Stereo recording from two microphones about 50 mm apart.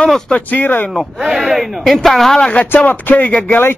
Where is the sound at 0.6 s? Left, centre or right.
Left.